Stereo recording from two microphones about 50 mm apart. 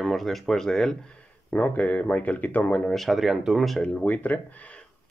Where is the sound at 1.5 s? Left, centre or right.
Left.